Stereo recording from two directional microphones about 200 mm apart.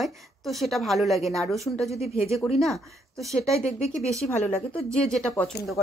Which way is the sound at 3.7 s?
35° left (ahead or behind).